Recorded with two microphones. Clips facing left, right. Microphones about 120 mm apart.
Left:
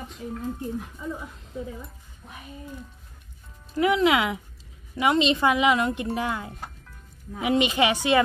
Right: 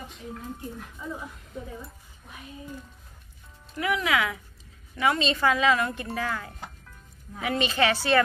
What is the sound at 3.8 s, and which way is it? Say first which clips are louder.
A woman's voice: left 5 dB; 25° left (ahead or behind).